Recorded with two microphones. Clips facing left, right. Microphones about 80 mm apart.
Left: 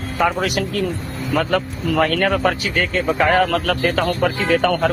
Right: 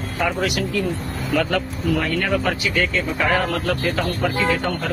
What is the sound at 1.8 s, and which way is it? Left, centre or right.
Speech, left.